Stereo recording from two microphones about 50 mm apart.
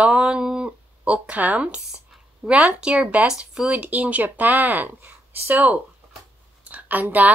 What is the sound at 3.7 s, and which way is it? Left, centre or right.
Speech, right.